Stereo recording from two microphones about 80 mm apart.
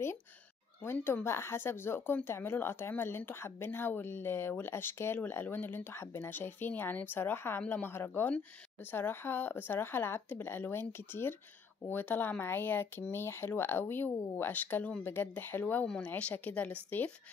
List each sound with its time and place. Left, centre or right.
0.9 s speech: left
7.9 s speech: left
15.6 s speech: centre